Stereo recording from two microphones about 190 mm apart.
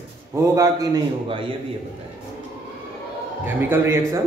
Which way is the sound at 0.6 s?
20° right (ahead or behind).